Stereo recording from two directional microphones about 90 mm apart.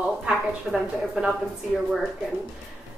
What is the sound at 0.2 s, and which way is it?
A woman's voice, 5° right (ahead or behind).